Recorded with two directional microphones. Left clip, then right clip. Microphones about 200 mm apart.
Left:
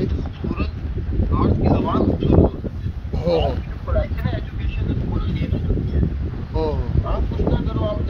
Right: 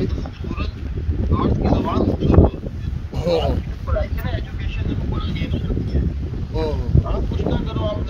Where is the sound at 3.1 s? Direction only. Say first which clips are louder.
Even; 25° right (ahead or behind).